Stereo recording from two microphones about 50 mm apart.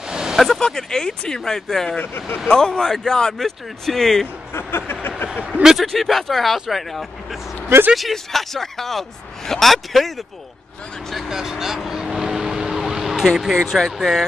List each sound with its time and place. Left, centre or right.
0.0 s vehicle: centre
0.6 s speech: centre
4.5 s speech: left
5.5 s a man's voice: centre
5.8 s speech: centre
11.2 s vehicle: centre
13.7 s speech: centre